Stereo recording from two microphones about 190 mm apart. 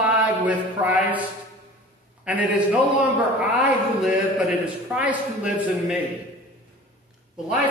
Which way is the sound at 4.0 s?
5° right (ahead or behind).